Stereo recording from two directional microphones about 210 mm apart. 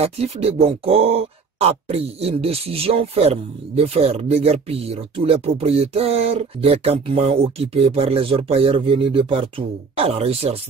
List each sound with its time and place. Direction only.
0.0 s speech: 30° right (ahead or behind)